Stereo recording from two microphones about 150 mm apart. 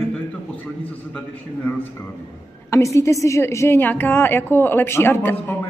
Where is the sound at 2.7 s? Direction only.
20° left (ahead or behind).